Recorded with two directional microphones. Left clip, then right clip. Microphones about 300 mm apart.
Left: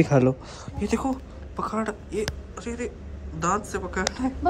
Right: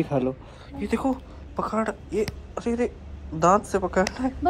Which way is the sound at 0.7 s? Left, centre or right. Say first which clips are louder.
Right 1 dB; centre.